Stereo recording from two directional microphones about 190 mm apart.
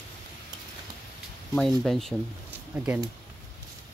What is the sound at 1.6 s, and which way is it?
Speech, centre (ahead or behind).